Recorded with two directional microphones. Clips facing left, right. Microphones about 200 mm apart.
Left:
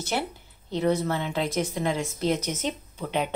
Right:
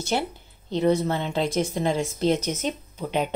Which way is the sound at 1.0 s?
25° right (ahead or behind).